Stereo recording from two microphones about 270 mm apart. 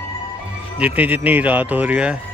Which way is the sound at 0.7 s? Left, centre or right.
Centre.